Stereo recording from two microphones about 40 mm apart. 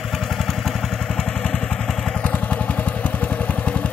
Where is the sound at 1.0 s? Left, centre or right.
Centre.